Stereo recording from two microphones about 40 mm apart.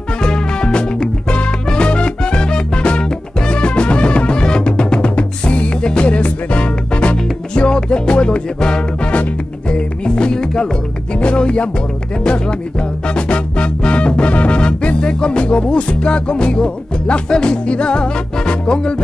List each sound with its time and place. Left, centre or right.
0.2 s music: centre